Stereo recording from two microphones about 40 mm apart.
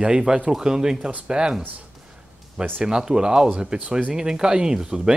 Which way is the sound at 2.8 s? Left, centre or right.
Centre.